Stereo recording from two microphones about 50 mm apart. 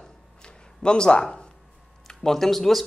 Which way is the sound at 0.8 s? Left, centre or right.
Centre.